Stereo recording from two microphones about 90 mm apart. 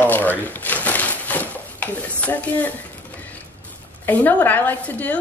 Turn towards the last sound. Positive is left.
turn(degrees=15)  # may be behind; listen again after turning